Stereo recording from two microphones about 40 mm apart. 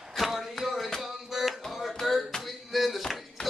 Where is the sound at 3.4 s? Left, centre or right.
Left.